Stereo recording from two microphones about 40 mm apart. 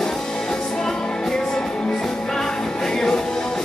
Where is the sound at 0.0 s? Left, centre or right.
Centre.